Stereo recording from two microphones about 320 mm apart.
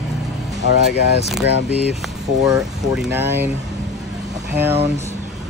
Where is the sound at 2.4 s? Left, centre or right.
Centre.